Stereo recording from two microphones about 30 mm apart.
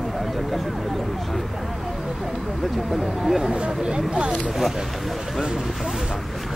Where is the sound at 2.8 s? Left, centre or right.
Centre.